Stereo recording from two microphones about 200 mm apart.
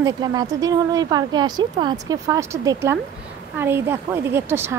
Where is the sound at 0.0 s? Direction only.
20° right (ahead or behind).